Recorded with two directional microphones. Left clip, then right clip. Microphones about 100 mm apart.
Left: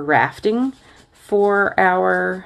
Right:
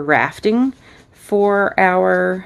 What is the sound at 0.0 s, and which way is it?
Speech, 50° right (ahead or behind).